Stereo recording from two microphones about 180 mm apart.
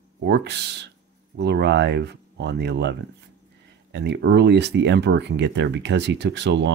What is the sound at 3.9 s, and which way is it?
Speech, 70° right (ahead or behind).